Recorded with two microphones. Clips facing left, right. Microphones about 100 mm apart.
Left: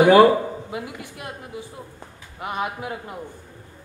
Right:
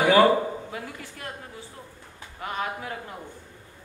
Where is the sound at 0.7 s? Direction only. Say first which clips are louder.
Left 4 dB; 20° left (ahead or behind).